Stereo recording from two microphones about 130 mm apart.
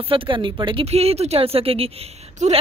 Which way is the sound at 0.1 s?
40° right (ahead or behind).